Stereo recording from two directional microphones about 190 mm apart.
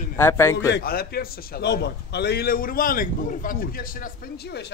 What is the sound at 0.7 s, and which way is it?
A man's voice, 55° left (ahead or behind).